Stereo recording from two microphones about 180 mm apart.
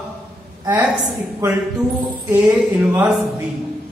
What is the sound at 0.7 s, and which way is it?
Speech, 10° right (ahead or behind).